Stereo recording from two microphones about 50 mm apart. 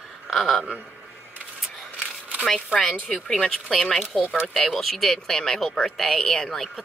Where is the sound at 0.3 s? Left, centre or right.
Centre.